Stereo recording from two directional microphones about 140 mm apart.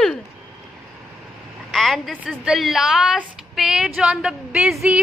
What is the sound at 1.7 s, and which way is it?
Speech, centre (ahead or behind).